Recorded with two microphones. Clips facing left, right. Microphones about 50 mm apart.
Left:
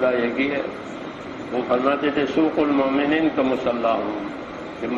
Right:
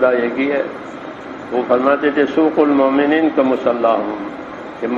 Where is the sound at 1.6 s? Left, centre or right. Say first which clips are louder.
Right 6 dB; right.